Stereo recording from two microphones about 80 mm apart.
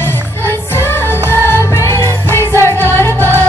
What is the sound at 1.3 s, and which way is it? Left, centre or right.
Music, left.